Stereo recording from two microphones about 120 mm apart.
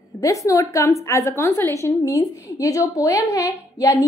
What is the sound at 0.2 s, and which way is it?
A woman's voice, 25° left (ahead or behind).